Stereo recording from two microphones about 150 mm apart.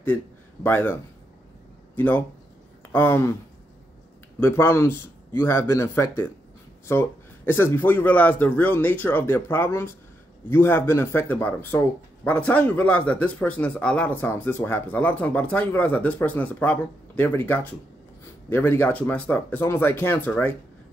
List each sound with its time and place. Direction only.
0.7 s speech: 15° left (ahead or behind)
2.0 s speech: 10° left (ahead or behind)
4.4 s speech: 15° left (ahead or behind)